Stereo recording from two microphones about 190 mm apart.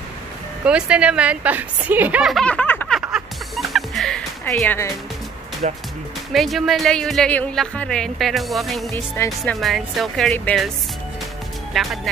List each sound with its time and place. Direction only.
0.7 s speech: 5° right (ahead or behind)
3.0 s music: 5° right (ahead or behind)
4.6 s speech: 10° left (ahead or behind)
5.6 s speech: 40° right (ahead or behind)
6.3 s speech: centre (ahead or behind)
8.9 s speech: 15° left (ahead or behind)
9.4 s speech: centre (ahead or behind)
11.7 s speech: centre (ahead or behind)